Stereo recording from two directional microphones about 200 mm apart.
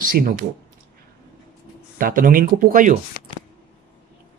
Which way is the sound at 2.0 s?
45° right (ahead or behind).